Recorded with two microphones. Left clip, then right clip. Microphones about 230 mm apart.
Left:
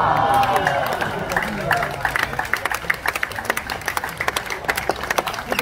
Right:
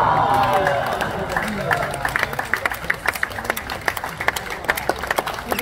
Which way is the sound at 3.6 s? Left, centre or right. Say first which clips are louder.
Even; left.